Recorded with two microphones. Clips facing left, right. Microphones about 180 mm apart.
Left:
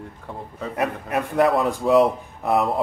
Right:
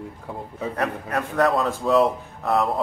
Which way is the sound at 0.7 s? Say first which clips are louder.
Left 3 dB; 15° left (ahead or behind).